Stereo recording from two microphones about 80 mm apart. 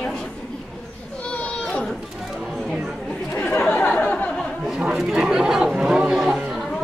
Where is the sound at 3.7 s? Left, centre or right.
Centre.